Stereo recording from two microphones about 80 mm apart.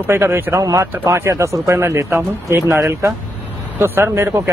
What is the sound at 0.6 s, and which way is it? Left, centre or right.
Speech, right.